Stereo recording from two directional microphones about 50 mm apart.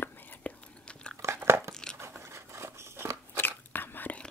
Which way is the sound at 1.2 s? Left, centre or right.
Right.